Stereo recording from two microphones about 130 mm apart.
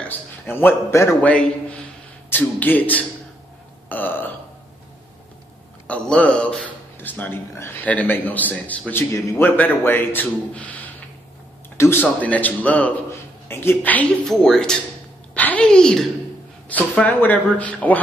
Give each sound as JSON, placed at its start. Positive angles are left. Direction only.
{"t": 0.5, "sound": "a man's voice", "side_deg": 15}
{"t": 3.9, "sound": "burping", "side_deg": 15}
{"t": 5.9, "sound": "a man's voice", "side_deg": 10}